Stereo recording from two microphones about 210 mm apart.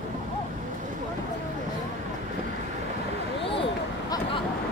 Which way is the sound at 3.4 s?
25° left (ahead or behind).